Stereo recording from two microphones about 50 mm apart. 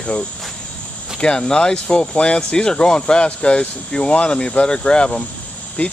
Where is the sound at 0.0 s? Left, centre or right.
Left.